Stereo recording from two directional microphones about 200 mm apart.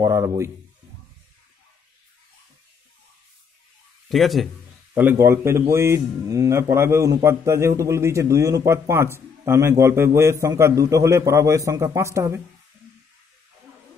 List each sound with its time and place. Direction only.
0.0 s a man's voice: 15° right (ahead or behind)
4.1 s a man's voice: centre (ahead or behind)
4.9 s a man's voice: 10° right (ahead or behind)